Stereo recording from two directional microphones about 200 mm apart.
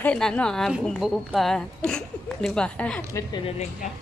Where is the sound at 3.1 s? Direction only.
20° left (ahead or behind).